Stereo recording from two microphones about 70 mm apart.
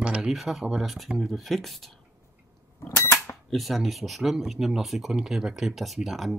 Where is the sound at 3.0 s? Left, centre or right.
Left.